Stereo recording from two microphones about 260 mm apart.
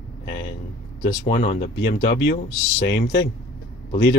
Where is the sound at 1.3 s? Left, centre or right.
Left.